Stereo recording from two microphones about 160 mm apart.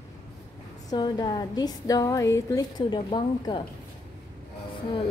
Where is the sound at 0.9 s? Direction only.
25° left (ahead or behind).